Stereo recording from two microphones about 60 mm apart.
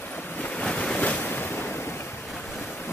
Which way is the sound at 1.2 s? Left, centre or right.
Left.